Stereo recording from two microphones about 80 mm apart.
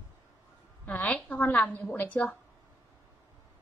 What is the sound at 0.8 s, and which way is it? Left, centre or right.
A woman's voice, centre.